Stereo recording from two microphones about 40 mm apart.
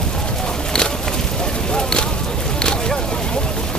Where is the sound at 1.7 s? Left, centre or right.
Centre.